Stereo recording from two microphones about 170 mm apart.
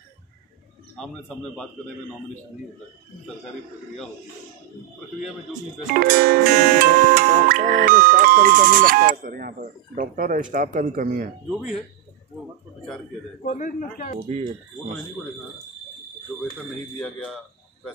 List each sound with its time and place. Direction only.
0.9 s a man's voice: 5° left (ahead or behind)
5.9 s music: 60° right (ahead or behind)
10.5 s a man's voice: 55° right (ahead or behind)
13.5 s a man's voice: 45° left (ahead or behind)
14.2 s a man's voice: 50° right (ahead or behind)
17.0 s a man's voice: 5° left (ahead or behind)